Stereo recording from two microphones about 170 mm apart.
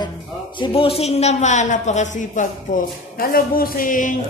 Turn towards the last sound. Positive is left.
turn(degrees=50)  # may be behind; listen again after turning